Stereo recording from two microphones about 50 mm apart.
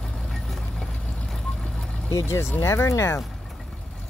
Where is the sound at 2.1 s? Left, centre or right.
Left.